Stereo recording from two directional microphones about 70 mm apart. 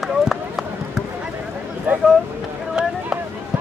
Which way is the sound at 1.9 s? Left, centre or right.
Right.